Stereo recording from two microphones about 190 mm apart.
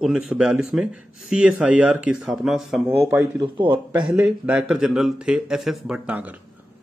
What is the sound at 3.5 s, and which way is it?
Speech, 25° right (ahead or behind).